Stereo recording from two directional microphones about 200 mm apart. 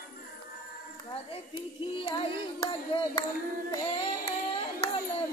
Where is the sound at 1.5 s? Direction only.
25° left (ahead or behind).